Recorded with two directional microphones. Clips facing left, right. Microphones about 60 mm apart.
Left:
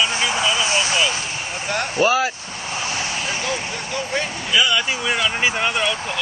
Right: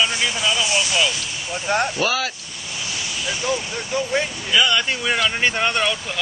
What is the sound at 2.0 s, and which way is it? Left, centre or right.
Speech, left.